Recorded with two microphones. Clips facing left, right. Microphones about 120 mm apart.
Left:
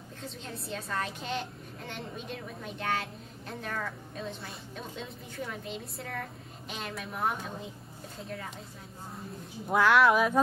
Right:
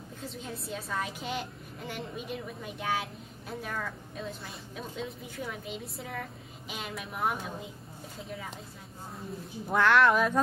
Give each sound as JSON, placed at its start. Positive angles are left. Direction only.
{"t": 0.2, "sound": "a woman's voice", "side_deg": -5}
{"t": 9.7, "sound": "a woman's voice", "side_deg": 0}